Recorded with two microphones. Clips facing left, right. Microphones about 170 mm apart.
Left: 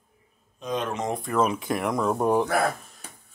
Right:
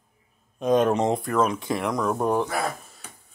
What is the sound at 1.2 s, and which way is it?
Speech, 5° left (ahead or behind).